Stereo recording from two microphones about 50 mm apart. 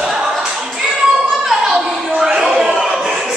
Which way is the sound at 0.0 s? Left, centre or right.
Centre.